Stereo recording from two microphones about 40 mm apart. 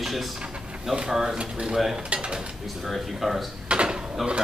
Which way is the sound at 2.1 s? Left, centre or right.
Right.